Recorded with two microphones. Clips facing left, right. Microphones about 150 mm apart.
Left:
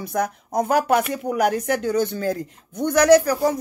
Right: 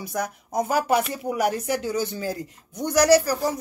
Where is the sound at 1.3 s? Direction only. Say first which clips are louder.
Left 3 dB; 55° left (ahead or behind).